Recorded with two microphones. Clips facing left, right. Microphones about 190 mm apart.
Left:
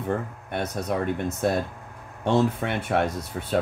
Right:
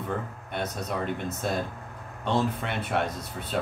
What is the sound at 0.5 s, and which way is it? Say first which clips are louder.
Speech: left 4 dB; 55° left (ahead or behind).